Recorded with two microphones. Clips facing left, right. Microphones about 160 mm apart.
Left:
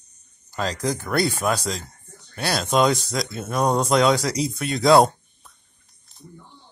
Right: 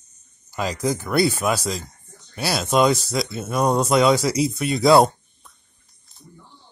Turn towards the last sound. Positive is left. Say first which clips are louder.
# even
turn(degrees=0)  # may be behind; listen again after turning